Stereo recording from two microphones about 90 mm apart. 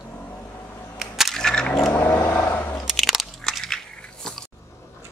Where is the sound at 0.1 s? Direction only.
25° left (ahead or behind).